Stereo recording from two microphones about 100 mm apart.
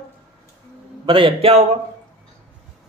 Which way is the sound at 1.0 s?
60° right (ahead or behind).